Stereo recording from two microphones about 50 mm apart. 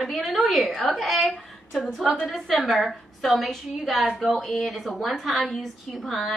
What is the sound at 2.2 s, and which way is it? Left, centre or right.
A woman's voice, centre.